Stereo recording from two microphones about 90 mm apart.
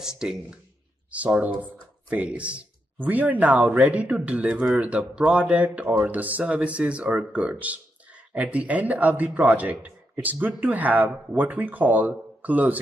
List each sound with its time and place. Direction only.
0.0 s speech: 5° right (ahead or behind)